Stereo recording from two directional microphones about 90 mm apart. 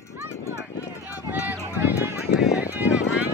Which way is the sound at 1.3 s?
15° right (ahead or behind).